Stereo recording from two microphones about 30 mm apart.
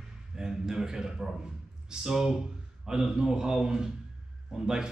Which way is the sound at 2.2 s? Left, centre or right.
Centre.